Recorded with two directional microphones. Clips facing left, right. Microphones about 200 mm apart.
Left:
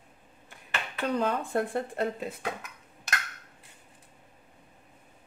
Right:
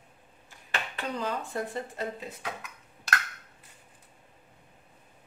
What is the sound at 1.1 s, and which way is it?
Speech, 55° left (ahead or behind).